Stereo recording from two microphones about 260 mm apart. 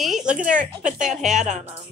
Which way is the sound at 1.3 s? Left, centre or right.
Right.